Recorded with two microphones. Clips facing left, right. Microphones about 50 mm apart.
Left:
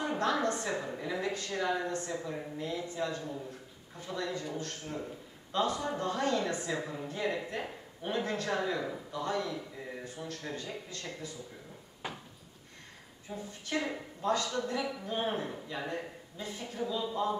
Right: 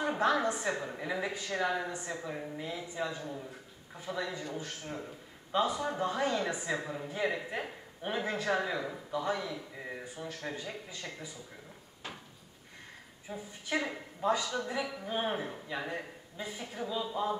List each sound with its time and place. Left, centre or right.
0.0 s a man's voice: centre
12.0 s a sound: centre
13.3 s a man's voice: centre